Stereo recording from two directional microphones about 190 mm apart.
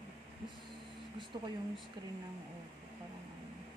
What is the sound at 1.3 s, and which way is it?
Speech, 20° right (ahead or behind).